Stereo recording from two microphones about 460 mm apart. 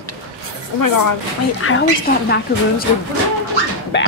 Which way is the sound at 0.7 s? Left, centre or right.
Left.